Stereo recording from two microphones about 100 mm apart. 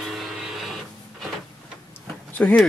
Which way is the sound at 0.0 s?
Centre (ahead or behind).